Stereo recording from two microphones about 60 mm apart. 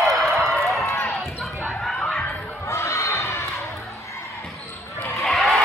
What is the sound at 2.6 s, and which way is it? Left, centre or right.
Children shouting, left.